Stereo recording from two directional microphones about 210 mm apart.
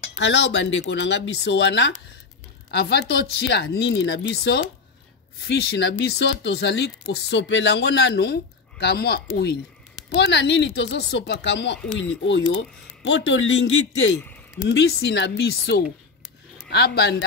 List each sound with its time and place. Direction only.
0.2 s speech: 60° left (ahead or behind)
14.2 s a sound: 10° left (ahead or behind)
14.7 s speech: 55° left (ahead or behind)